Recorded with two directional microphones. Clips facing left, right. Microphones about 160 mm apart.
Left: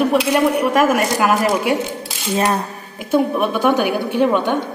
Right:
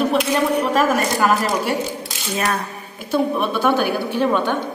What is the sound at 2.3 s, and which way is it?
Speech, 25° left (ahead or behind).